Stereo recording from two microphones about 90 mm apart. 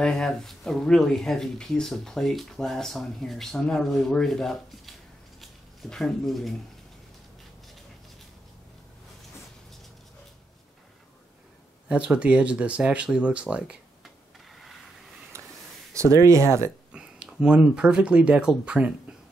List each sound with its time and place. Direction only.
0.0 s speech: 5° left (ahead or behind)
11.9 s speech: 15° right (ahead or behind)
15.3 s a sound: 35° right (ahead or behind)
15.9 s speech: 35° right (ahead or behind)
16.9 s speech: 10° right (ahead or behind)